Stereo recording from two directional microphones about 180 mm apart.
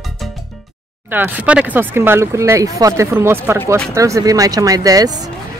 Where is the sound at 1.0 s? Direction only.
10° right (ahead or behind).